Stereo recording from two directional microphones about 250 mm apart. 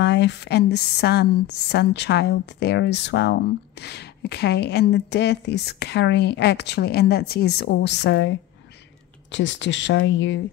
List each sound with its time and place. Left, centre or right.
0.0 s speech: left